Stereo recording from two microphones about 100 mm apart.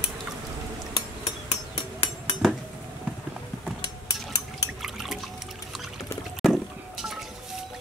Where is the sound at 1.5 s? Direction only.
90° left.